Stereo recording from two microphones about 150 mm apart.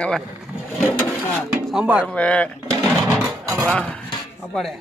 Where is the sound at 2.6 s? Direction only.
25° right (ahead or behind).